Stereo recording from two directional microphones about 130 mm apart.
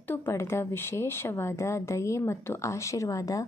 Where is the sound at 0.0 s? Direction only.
15° left (ahead or behind).